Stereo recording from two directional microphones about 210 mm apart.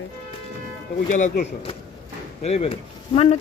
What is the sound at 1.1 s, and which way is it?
Speech, 35° left (ahead or behind).